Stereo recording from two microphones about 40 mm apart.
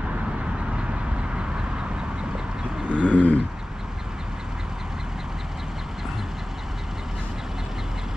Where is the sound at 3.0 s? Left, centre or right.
Left.